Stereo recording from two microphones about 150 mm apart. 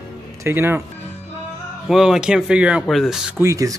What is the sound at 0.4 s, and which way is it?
Speech, 15° right (ahead or behind).